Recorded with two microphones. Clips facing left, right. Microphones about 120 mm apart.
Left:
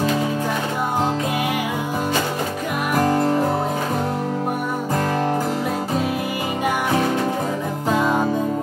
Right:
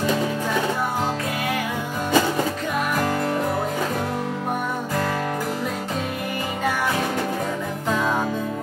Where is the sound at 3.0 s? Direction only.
35° left (ahead or behind).